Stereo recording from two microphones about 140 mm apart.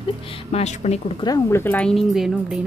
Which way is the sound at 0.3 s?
50° left (ahead or behind).